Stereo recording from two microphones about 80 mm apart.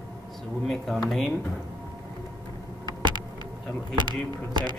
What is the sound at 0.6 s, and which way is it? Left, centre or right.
Speech, centre.